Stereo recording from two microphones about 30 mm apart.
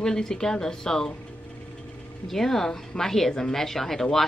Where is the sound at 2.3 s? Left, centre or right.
Centre.